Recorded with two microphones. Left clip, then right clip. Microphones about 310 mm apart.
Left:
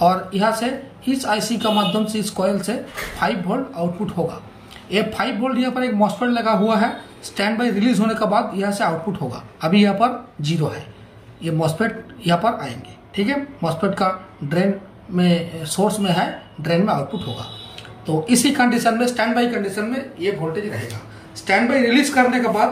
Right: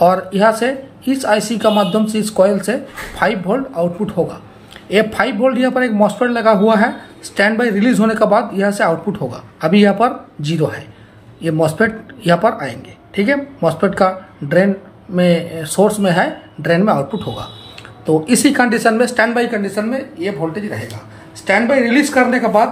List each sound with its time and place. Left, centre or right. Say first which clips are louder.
0.0 s speech: right 6 dB; centre